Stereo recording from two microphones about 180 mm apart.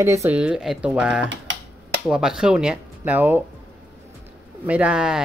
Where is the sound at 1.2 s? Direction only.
90° right.